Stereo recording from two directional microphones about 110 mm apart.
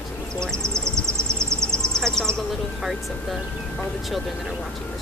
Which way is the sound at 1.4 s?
5° left (ahead or behind).